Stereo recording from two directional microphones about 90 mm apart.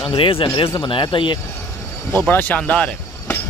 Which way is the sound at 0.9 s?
65° left (ahead or behind).